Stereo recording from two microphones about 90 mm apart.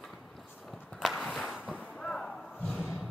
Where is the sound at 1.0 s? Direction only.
5° right (ahead or behind).